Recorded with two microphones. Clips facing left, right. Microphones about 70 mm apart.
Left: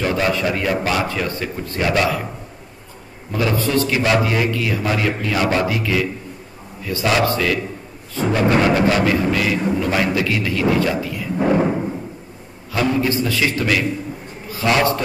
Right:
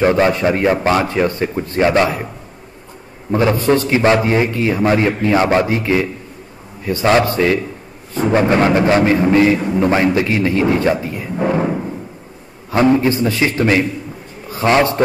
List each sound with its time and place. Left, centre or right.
0.0 s a man's voice: right
3.3 s a man's voice: right
12.7 s a man's voice: right